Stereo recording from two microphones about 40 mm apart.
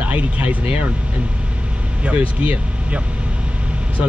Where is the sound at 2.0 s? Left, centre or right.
Right.